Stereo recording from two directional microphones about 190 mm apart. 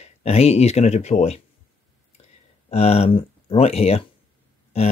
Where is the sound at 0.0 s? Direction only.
35° left (ahead or behind).